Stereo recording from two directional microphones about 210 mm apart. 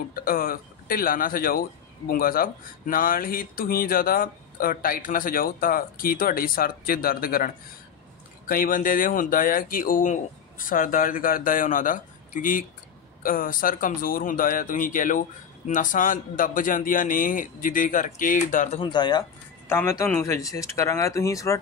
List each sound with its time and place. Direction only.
0.1 s speech: 45° left (ahead or behind); by 21.5 s 15° left (ahead or behind)